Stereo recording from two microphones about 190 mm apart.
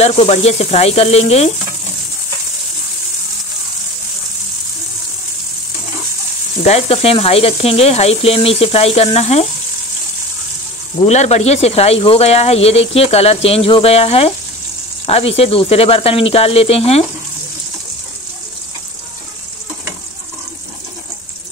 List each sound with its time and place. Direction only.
0.0 s speech: 35° left (ahead or behind)
6.6 s speech: 35° left (ahead or behind)
11.0 s speech: 35° left (ahead or behind)